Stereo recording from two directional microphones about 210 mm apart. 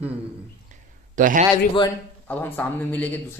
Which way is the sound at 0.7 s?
40° right (ahead or behind).